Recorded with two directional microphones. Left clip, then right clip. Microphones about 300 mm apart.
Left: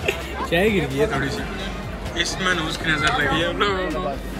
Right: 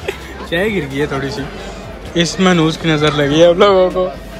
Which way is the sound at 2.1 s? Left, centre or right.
Centre.